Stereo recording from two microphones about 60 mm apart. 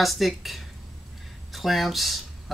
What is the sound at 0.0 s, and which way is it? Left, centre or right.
Speech, centre.